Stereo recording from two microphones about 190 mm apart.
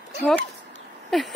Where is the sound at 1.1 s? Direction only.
Centre (ahead or behind).